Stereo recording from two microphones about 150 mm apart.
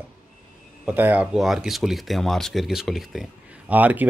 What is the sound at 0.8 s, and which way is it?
Speech, 10° right (ahead or behind).